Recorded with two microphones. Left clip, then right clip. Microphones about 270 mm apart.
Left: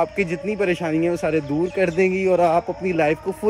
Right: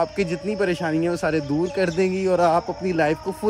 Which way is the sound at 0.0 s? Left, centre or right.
Centre.